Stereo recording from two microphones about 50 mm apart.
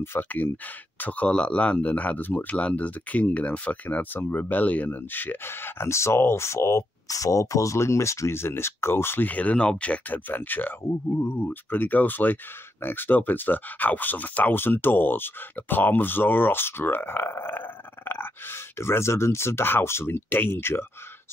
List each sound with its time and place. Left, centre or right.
0.2 s speech: left
1.3 s speech: left
7.2 s speech: left
9.2 s speech: left
18.8 s speech: left